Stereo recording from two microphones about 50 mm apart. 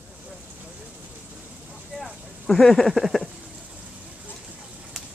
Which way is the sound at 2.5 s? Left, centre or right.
Centre.